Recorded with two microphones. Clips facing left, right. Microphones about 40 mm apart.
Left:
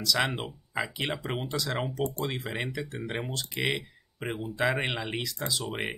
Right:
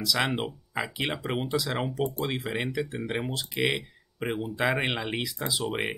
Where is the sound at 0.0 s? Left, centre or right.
Centre.